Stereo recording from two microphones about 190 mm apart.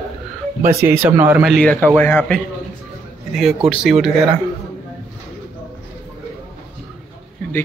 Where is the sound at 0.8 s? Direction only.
10° right (ahead or behind).